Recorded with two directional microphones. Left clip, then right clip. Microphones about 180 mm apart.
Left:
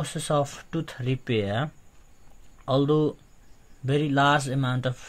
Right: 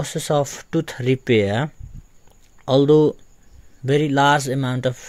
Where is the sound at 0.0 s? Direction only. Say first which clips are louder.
Right 5 dB; 40° right (ahead or behind).